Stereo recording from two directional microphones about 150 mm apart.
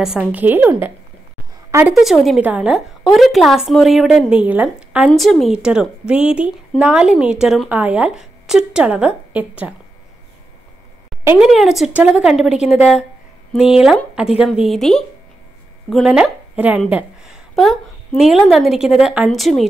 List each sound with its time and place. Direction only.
0.0 s a woman's voice: 5° right (ahead or behind)
2.0 s a woman's voice: centre (ahead or behind)
11.2 s a woman's voice: 5° right (ahead or behind)